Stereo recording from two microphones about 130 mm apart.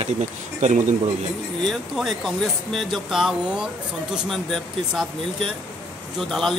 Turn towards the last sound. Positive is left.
turn(degrees=5)  # may be behind; listen again after turning